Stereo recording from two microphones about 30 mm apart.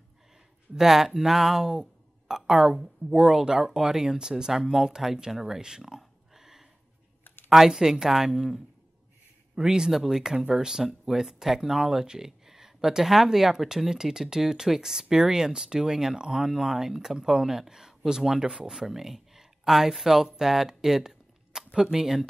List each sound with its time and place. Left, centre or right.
0.7 s a woman's voice: centre
5.9 s a sound: centre
7.5 s speech: centre
9.6 s speech: right
9.9 s speech: centre
12.2 s a sound: centre
13.0 s speech: centre; by 16.4 s right
16.4 s speech: centre
20.3 s a sound: centre
21.9 s speech: centre